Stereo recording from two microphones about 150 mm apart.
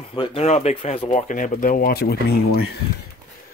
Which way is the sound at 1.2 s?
55° left (ahead or behind).